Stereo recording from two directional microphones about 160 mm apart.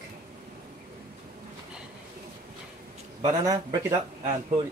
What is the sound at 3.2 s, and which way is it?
Speech, 20° right (ahead or behind).